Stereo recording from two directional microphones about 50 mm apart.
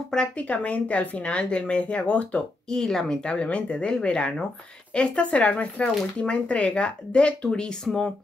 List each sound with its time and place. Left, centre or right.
0.1 s speech: left
2.7 s speech: centre
3.3 s speech: left